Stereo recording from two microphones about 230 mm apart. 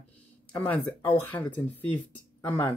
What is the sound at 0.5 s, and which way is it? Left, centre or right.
Speech, centre.